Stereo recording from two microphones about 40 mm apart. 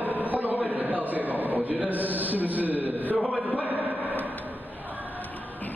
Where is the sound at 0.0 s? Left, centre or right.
Right.